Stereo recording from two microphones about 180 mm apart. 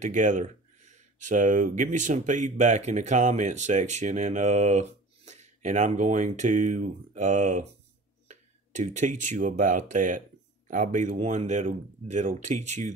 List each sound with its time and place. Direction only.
0.0 s speech: 45° right (ahead or behind)